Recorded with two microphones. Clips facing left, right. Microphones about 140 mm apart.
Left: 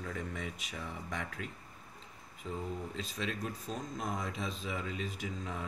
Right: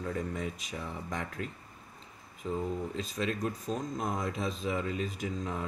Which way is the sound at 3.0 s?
45° right (ahead or behind).